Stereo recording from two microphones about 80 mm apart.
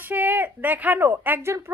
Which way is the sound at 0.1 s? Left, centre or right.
Right.